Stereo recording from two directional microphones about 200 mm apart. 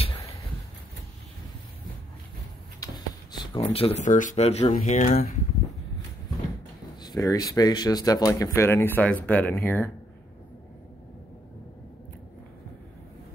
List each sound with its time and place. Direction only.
2.8 s a sound: 20° left (ahead or behind)
3.3 s speech: 25° left (ahead or behind)
7.0 s speech: 20° left (ahead or behind)